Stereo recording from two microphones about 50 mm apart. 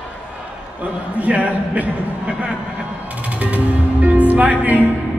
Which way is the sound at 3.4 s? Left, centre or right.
Right.